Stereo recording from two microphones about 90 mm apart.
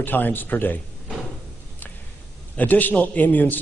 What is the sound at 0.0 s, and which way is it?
Speech, 20° left (ahead or behind).